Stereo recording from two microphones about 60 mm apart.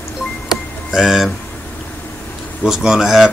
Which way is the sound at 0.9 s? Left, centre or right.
Centre.